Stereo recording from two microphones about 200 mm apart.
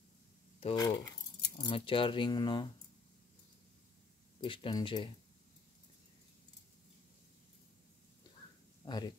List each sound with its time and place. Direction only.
0.6 s speech: 25° left (ahead or behind)
4.4 s speech: 25° left (ahead or behind)
8.8 s speech: 20° left (ahead or behind)